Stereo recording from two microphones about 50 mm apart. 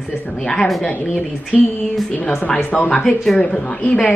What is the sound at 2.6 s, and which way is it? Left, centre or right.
Speech, left.